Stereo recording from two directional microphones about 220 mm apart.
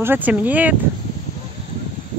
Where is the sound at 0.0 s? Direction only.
10° right (ahead or behind).